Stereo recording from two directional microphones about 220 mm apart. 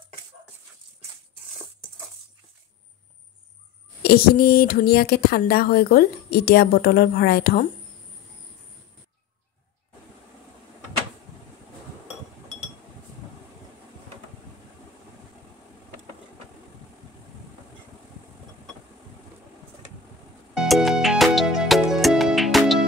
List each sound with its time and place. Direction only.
4.0 s speech: 45° left (ahead or behind)
20.5 s music: centre (ahead or behind)